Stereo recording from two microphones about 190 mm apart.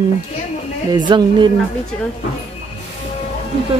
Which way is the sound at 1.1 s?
25° right (ahead or behind).